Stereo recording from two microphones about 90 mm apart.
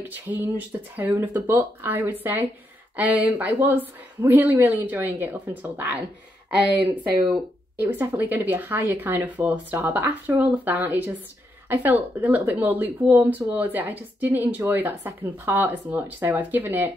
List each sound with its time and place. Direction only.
0.3 s speech: 20° right (ahead or behind)
7.7 s speech: 25° right (ahead or behind)